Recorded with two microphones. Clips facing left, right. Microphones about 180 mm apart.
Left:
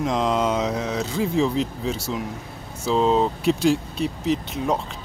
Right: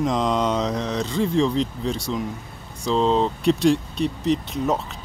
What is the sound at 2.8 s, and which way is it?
Speech, 5° left (ahead or behind).